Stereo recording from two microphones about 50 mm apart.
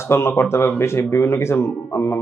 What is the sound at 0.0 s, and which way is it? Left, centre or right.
A man's voice, left.